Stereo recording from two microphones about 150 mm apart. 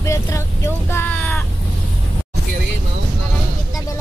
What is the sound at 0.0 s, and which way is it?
Vehicle, 20° left (ahead or behind).